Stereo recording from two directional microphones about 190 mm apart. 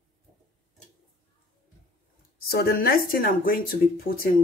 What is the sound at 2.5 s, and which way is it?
Speech, 50° left (ahead or behind).